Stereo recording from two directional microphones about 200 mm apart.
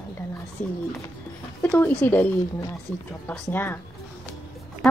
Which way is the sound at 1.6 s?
10° left (ahead or behind).